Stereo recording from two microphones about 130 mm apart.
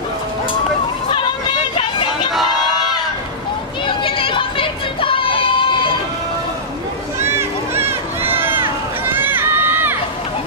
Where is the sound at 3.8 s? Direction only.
40° left (ahead or behind).